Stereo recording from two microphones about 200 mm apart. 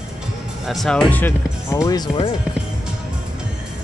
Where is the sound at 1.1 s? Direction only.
10° left (ahead or behind).